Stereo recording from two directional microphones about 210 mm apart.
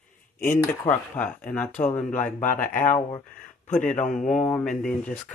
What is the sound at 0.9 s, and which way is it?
Speech, 5° left (ahead or behind).